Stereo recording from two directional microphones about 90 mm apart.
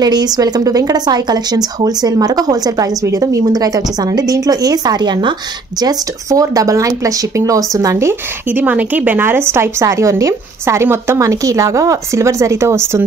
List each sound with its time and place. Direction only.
0.0 s a woman's voice: 50° right (ahead or behind)
5.8 s a woman's voice: 45° right (ahead or behind)
8.5 s a woman's voice: 20° right (ahead or behind)